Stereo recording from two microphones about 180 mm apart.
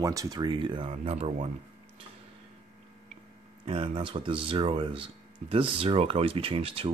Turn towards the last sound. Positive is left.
turn(degrees=-30)  # may be behind; listen again after turning